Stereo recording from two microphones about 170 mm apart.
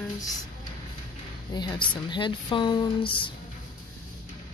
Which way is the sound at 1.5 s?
25° left (ahead or behind).